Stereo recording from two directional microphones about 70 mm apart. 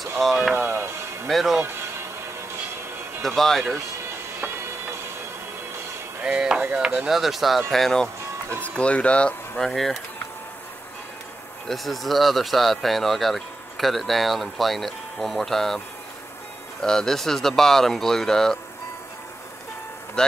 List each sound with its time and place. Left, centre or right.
0.2 s speech: centre
0.6 s music: right
1.2 s speech: centre
3.2 s speech: centre
6.2 s chop: centre
7.0 s speech: centre
8.6 s speech: centre
9.7 s speech: centre
11.6 s speech: centre
16.8 s speech: centre
20.2 s speech: centre